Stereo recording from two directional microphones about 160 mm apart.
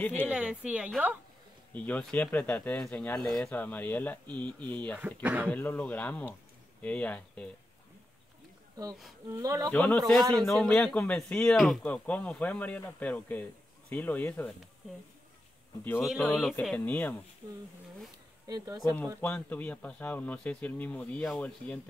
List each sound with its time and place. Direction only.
0.0 s speech: 10° left (ahead or behind)
0.3 s a woman's voice: 5° right (ahead or behind)
1.7 s speech: 10° left (ahead or behind)
5.2 s a woman's voice: 10° right (ahead or behind)
5.5 s speech: 10° left (ahead or behind)
9.3 s speech: 20° right (ahead or behind)
9.7 s a man's voice: 5° left (ahead or behind)
15.8 s speech: 15° left (ahead or behind)
16.1 s a man's voice: centre (ahead or behind)
17.4 s speech: 20° right (ahead or behind)
19.2 s speech: 10° left (ahead or behind)